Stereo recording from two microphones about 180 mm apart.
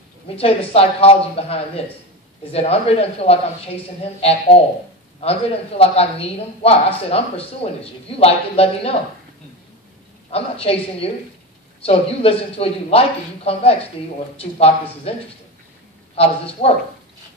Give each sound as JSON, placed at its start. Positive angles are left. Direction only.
{"t": 0.4, "sound": "speech", "side_deg": 35}
{"t": 10.3, "sound": "speech", "side_deg": 35}
{"t": 16.6, "sound": "speech", "side_deg": 35}